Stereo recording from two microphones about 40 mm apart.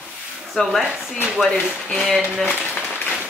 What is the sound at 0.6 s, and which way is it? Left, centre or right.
Speech, left.